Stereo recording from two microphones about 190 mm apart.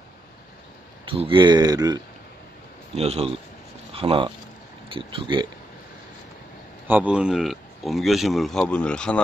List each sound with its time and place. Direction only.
1.0 s speech: 25° right (ahead or behind)
3.0 s speech: 30° right (ahead or behind)
6.9 s speech: 5° right (ahead or behind)